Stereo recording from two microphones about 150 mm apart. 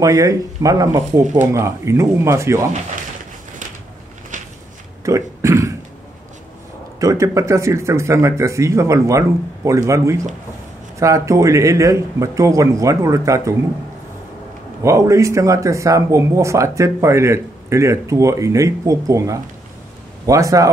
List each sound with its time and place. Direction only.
0.0 s speech: 20° right (ahead or behind)
4.3 s a sound: 60° right (ahead or behind)
5.0 s speech: 20° right (ahead or behind)
7.0 s speech: 20° right (ahead or behind)
14.8 s speech: 20° right (ahead or behind)